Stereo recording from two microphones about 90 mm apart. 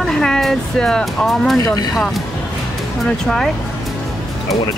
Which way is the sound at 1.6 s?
45° left (ahead or behind).